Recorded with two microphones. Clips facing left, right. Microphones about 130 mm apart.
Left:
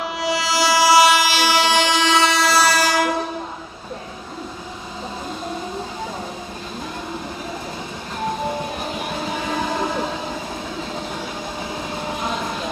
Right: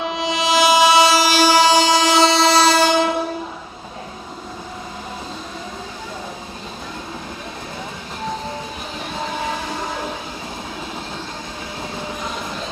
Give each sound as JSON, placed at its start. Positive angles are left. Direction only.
{"t": 0.0, "sound": "train", "side_deg": -20}
{"t": 1.1, "sound": "train", "side_deg": -40}